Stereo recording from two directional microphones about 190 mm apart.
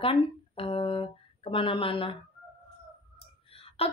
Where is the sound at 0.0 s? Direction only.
30° left (ahead or behind).